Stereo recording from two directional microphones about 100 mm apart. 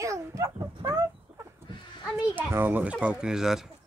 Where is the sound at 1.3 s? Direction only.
10° right (ahead or behind).